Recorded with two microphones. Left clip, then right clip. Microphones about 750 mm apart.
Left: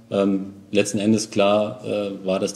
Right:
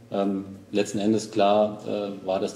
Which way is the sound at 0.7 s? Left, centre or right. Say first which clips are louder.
Left 4 dB; left.